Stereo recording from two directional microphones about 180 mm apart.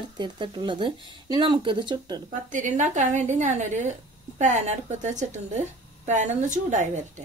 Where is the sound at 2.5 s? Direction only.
45° right (ahead or behind).